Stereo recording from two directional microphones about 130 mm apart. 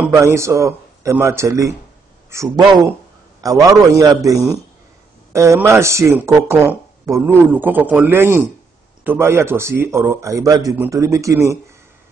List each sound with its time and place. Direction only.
0.0 s a man's voice: 20° right (ahead or behind)